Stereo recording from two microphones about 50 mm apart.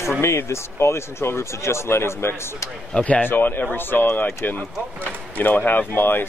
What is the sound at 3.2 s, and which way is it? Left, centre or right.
Speech, left.